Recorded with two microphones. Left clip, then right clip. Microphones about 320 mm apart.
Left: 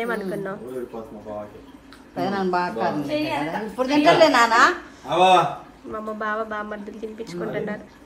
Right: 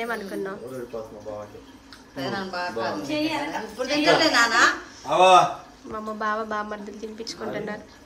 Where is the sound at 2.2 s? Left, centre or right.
Centre.